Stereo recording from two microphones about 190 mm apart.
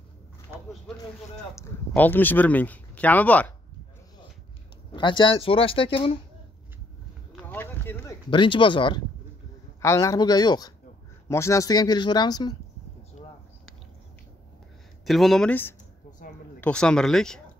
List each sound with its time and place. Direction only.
0.5 s a sound: 15° right (ahead or behind)
1.3 s speech: 15° left (ahead or behind)
4.9 s speech: 25° left (ahead or behind)
7.3 s a sound: 10° left (ahead or behind)
8.3 s speech: 25° left (ahead or behind)
15.0 s speech: centre (ahead or behind)